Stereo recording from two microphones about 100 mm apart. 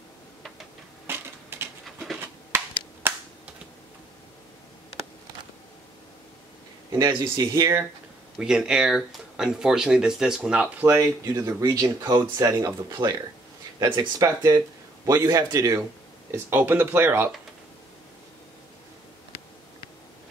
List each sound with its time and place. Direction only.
1.0 s a sound: 25° right (ahead or behind)
3.0 s finger snapping: 20° right (ahead or behind)
7.0 s speech: 40° right (ahead or behind)
8.4 s speech: 5° right (ahead or behind)
10.9 s speech: 30° right (ahead or behind)
13.8 s speech: 50° right (ahead or behind)
14.2 s speech: 35° right (ahead or behind)
16.3 s speech: 20° right (ahead or behind)